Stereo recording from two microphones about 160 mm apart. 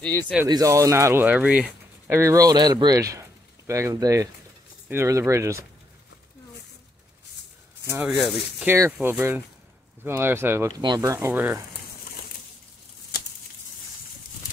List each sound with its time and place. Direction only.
0.0 s speech: 10° left (ahead or behind)
0.5 s speech: 20° right (ahead or behind)
7.8 s speech: 15° right (ahead or behind)